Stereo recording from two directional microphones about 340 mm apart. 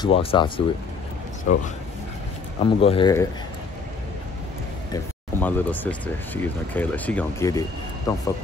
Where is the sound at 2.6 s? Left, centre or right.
Centre.